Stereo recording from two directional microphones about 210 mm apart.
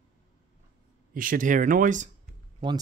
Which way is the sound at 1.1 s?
40° right (ahead or behind).